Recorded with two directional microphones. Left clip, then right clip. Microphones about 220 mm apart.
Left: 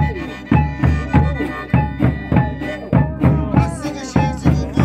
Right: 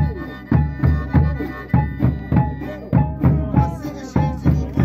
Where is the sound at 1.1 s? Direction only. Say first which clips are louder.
Left 7 dB; 40° left (ahead or behind).